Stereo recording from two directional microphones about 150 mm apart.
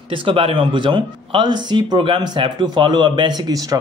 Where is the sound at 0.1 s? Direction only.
35° right (ahead or behind).